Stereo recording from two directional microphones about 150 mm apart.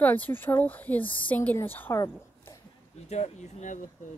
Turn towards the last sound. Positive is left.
turn(degrees=55)  # may be behind; listen again after turning